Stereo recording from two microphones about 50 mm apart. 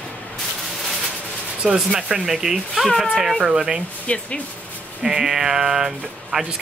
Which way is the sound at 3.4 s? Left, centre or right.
Right.